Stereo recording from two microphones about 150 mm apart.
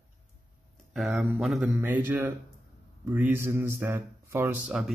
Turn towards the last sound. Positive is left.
turn(degrees=-15)  # may be behind; listen again after turning